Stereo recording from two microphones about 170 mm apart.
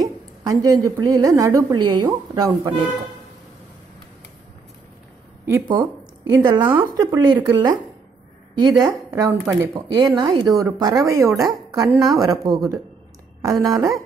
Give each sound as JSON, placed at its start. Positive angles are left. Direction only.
{"t": 0.0, "sound": "a woman's voice", "side_deg": -25}
{"t": 5.7, "sound": "speech", "side_deg": -20}